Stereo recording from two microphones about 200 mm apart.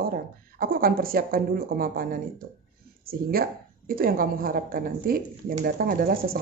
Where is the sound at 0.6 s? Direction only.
45° right (ahead or behind).